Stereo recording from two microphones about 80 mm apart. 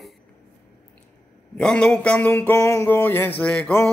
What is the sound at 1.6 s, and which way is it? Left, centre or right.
Speech, centre.